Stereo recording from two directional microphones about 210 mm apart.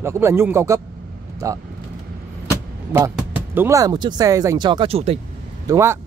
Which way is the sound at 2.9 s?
10° right (ahead or behind).